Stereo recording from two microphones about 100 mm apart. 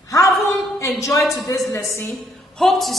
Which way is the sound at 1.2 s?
Centre (ahead or behind).